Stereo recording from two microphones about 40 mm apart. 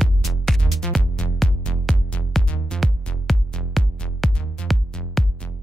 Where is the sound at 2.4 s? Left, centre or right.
Left.